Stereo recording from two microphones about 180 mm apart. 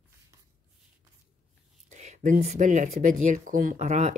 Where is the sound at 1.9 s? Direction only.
40° right (ahead or behind).